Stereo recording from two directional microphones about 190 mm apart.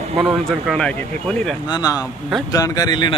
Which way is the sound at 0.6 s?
5° left (ahead or behind).